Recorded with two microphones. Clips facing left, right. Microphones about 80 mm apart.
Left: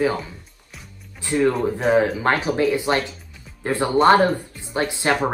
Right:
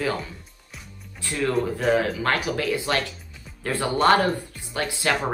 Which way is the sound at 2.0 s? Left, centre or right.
Left.